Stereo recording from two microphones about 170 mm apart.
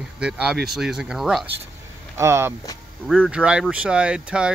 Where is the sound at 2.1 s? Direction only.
15° right (ahead or behind).